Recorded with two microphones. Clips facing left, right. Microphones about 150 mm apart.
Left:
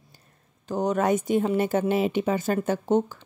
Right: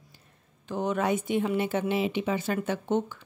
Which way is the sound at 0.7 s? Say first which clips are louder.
Left 4 dB; 40° left (ahead or behind).